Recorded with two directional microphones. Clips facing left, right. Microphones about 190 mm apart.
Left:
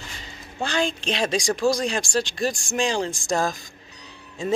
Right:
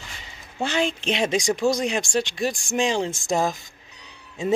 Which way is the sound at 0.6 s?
20° right (ahead or behind).